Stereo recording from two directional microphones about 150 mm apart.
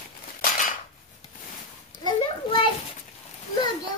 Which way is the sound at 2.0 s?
30° left (ahead or behind).